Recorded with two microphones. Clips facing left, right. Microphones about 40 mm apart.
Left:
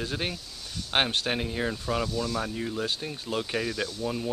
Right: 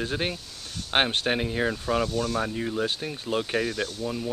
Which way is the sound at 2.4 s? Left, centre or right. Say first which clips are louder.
Right 3 dB; centre.